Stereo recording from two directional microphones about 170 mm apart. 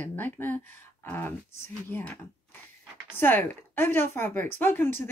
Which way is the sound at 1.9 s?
10° left (ahead or behind).